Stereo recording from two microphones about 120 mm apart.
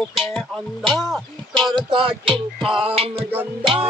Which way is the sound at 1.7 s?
40° right (ahead or behind).